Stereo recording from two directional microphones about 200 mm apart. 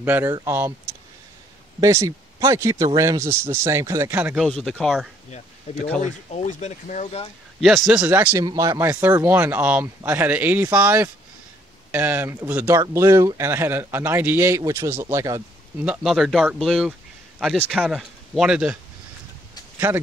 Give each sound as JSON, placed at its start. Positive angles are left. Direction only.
{"t": 0.0, "sound": "speech", "side_deg": -10}
{"t": 4.5, "sound": "speech", "side_deg": 5}
{"t": 6.3, "sound": "speech", "side_deg": 35}
{"t": 7.6, "sound": "speech", "side_deg": 0}
{"t": 15.8, "sound": "speech", "side_deg": -5}